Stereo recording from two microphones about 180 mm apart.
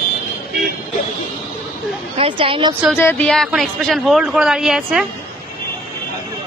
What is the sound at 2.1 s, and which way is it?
Speech, 30° right (ahead or behind).